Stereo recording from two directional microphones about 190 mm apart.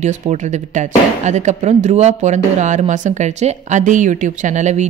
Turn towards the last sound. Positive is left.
turn(degrees=-40)  # may be behind; listen again after turning